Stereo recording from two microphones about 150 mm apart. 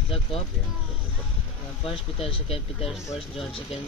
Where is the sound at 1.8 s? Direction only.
40° left (ahead or behind).